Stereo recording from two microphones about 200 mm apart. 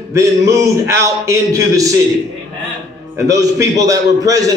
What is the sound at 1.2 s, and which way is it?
Speech, 15° right (ahead or behind).